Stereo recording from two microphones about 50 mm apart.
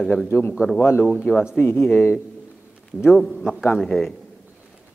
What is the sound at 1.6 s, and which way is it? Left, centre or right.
Speech, left.